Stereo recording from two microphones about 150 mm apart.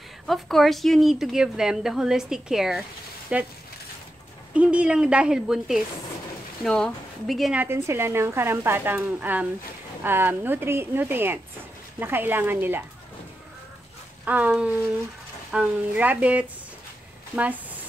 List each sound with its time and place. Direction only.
0.3 s a woman's voice: centre (ahead or behind)
4.6 s a woman's voice: 5° right (ahead or behind)
7.6 s speech: 15° right (ahead or behind)
14.2 s speech: 10° right (ahead or behind)